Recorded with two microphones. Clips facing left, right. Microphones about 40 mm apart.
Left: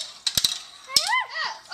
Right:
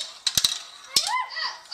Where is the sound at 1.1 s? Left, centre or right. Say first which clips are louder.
Left 2 dB; left.